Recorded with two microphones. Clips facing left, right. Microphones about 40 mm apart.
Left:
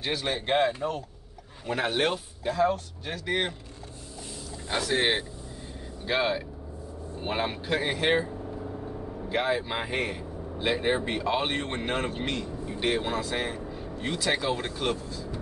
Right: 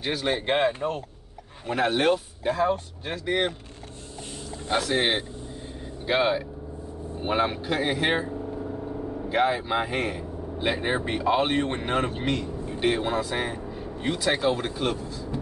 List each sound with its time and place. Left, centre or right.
0.0 s a man's voice: centre
0.3 s speech: centre
1.7 s a man's voice: centre
2.4 s speech: right
4.8 s speech: centre
9.3 s a man's voice: centre